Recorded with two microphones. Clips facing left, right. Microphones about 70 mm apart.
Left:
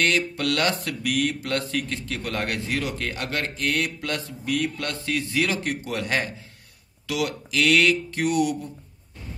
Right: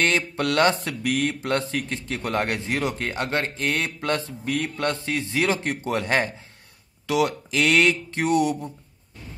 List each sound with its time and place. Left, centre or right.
0.0 s mantra: right